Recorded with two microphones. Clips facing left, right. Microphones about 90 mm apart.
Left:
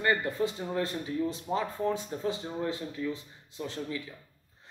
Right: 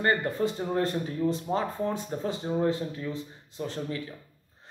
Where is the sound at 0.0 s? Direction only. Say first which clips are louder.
Right 2 dB; 40° right (ahead or behind).